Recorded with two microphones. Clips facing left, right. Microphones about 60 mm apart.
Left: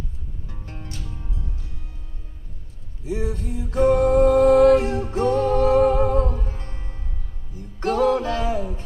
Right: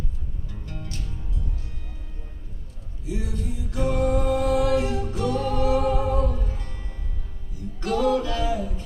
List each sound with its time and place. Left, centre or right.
0.5 s music: left
3.1 s music: left
4.5 s music: left
4.7 s music: left